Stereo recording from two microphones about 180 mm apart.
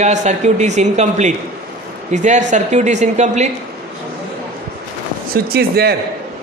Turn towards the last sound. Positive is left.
turn(degrees=-60)  # may be behind; listen again after turning